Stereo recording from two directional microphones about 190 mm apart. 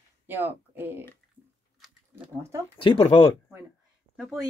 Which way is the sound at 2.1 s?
15° right (ahead or behind).